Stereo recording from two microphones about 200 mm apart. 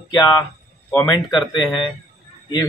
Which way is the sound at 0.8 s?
5° left (ahead or behind).